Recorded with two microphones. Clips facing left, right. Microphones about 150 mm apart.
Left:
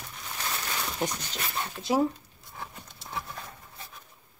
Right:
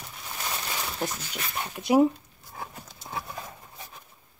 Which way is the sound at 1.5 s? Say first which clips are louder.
Right 5 dB; 15° right (ahead or behind).